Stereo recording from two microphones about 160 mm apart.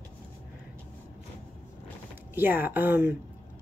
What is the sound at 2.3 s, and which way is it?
Speech, 10° right (ahead or behind).